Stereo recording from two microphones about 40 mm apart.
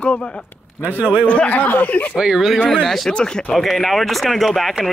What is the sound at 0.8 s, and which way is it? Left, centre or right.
Speech, right.